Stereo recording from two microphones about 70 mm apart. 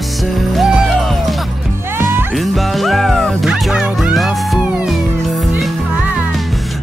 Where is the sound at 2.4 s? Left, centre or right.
Centre.